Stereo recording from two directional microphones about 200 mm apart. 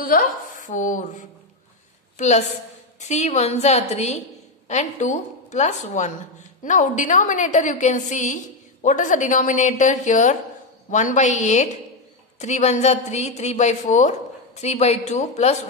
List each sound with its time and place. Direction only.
0.0 s a woman's voice: 40° left (ahead or behind)